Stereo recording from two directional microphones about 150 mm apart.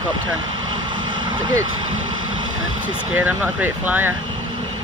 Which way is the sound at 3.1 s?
10° right (ahead or behind).